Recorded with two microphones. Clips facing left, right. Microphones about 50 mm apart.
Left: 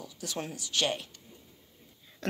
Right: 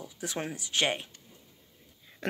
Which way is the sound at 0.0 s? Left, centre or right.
Right.